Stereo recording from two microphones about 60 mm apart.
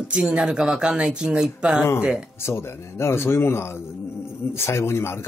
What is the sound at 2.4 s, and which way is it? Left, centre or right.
A man's voice, left.